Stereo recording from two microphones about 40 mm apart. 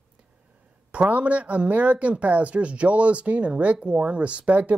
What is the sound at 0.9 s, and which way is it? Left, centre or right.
Speech, right.